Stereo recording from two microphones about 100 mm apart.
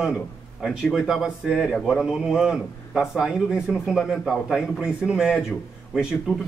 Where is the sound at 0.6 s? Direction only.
5° right (ahead or behind).